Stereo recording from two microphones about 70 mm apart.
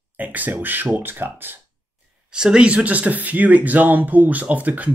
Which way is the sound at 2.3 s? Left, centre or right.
Centre.